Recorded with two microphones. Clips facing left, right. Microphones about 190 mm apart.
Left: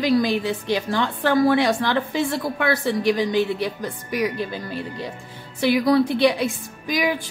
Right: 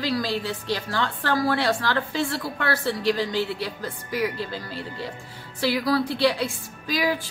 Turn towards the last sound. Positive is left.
turn(degrees=20)  # may be behind; listen again after turning